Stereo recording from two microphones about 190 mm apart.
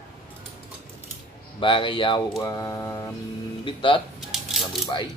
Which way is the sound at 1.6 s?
25° left (ahead or behind).